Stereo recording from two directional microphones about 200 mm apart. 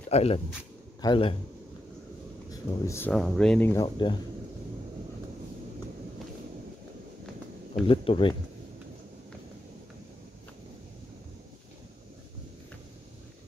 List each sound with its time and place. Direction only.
0.1 s speech: 30° left (ahead or behind)
2.5 s speech: 15° left (ahead or behind)
3.1 s speech: centre (ahead or behind)
3.8 s speech: 25° left (ahead or behind)
7.8 s speech: 25° left (ahead or behind)